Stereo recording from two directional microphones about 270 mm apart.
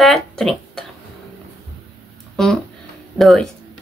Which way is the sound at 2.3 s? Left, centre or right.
Centre.